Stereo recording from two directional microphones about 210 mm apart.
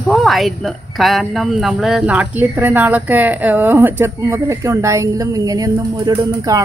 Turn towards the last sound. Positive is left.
turn(degrees=-15)  # may be behind; listen again after turning